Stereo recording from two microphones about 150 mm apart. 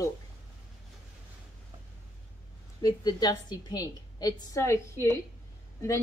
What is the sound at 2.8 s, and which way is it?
Speech, 30° left (ahead or behind).